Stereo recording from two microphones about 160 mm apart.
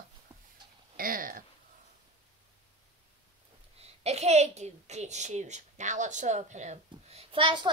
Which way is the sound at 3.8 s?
40° right (ahead or behind).